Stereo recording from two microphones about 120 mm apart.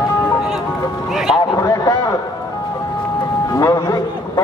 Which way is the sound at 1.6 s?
30° left (ahead or behind).